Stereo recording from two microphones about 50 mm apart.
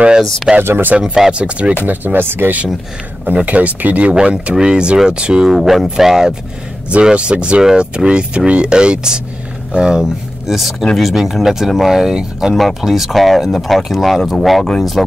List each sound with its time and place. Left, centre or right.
0.6 s speech: right
0.9 s speech: centre
1.9 s speech: right
3.4 s speech: right
5.5 s speech: centre
6.9 s speech: right
12.5 s speech: centre